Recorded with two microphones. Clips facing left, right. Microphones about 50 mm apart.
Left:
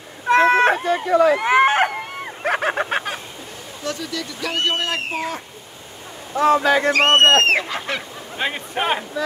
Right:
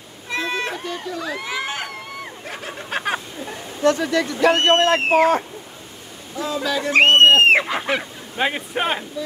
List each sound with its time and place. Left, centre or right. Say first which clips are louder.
0.3 s a sound: left 11 dB; left
1.0 s speech: left 12 dB; left
2.4 s a sound: left 12 dB; left
3.8 s speech: right 10 dB; right
6.3 s speech: left 8 dB; left
7.1 s speech: right 2 dB; left
7.4 s goose: right 3 dB; centre